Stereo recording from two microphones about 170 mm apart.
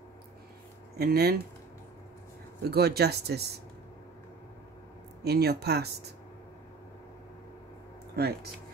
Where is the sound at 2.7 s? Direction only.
70° right (ahead or behind).